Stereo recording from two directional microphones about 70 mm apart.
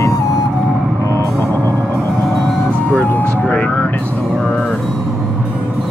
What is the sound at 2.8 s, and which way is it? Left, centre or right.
Vehicle, left.